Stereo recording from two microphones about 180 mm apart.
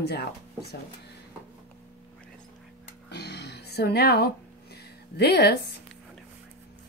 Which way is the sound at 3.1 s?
65° left (ahead or behind).